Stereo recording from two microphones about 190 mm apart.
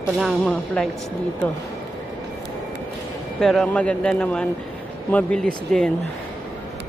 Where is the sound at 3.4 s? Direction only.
Centre (ahead or behind).